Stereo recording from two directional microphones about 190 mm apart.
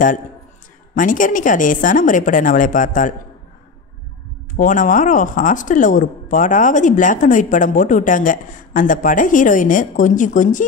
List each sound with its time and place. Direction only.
0.9 s a woman's voice: 45° left (ahead or behind)
4.6 s a woman's voice: 45° left (ahead or behind)